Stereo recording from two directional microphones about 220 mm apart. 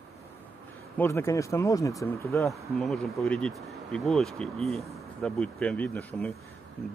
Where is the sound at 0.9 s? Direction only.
10° left (ahead or behind).